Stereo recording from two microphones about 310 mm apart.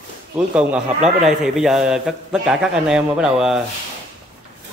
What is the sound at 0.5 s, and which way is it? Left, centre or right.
A man's voice, centre.